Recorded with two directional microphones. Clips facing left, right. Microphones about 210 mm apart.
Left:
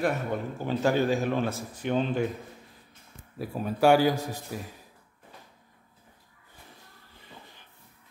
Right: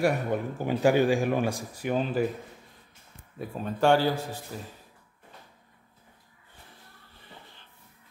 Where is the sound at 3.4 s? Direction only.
5° left (ahead or behind).